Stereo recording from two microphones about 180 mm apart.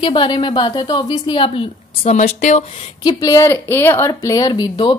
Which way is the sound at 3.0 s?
20° left (ahead or behind).